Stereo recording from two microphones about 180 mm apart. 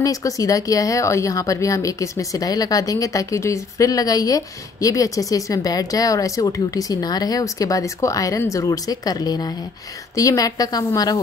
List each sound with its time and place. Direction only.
0.0 s speech: 20° left (ahead or behind)